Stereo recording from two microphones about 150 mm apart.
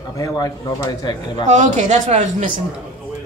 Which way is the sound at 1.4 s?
55° right (ahead or behind).